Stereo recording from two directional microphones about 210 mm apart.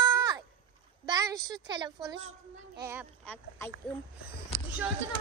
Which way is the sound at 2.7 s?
15° right (ahead or behind).